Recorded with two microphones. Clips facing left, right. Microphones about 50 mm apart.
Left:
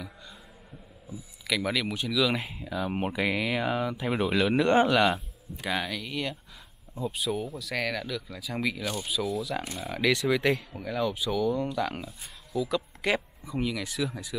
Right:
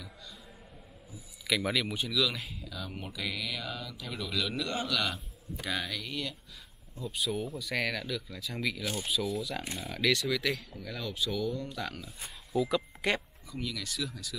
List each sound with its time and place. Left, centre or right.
1.5 s speech: centre
2.2 s speech: left
5.6 s speech: centre
9.0 s speech: centre; by 10.8 s left
10.8 s speech: centre
12.5 s speech: centre
13.5 s speech: left